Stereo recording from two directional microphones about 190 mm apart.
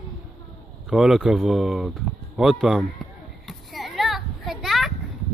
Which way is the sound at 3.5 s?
Centre (ahead or behind).